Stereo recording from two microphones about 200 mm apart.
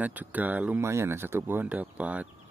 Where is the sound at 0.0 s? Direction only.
10° right (ahead or behind).